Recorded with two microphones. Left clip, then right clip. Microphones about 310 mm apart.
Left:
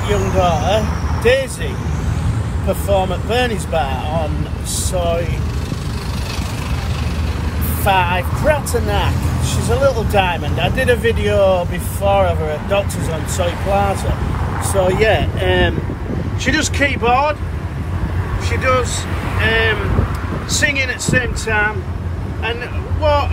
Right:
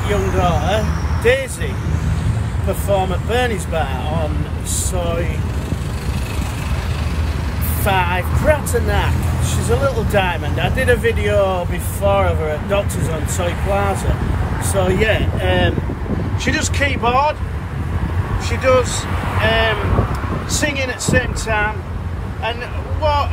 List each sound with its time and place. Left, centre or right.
0.4 s speech: centre
2.7 s speech: centre
7.8 s speech: centre
14.7 s speech: centre
15.4 s speech: left
16.4 s speech: centre
18.5 s speech: centre
23.0 s speech: centre